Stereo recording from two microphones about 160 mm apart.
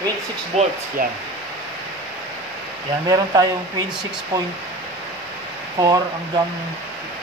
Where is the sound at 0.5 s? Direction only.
45° right (ahead or behind).